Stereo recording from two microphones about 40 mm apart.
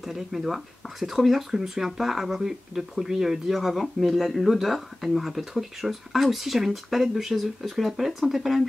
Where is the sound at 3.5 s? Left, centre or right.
Centre.